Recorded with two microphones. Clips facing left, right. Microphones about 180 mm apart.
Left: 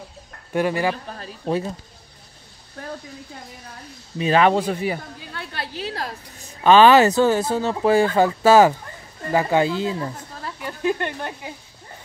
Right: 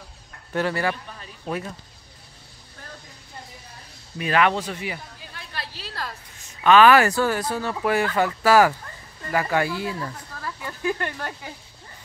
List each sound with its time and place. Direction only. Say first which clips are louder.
0.5 s speech: left 3 dB; 15° left (ahead or behind)
1.1 s speech: left 6 dB; 35° left (ahead or behind)
4.2 s speech: left 4 dB; 30° left (ahead or behind)
5.3 s a sound: left 6 dB; 60° left (ahead or behind)
6.6 s speech: left 3 dB; 30° left (ahead or behind)